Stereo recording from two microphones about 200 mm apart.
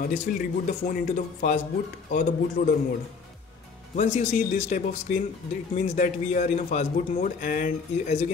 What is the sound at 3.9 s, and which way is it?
A man's voice, 35° left (ahead or behind).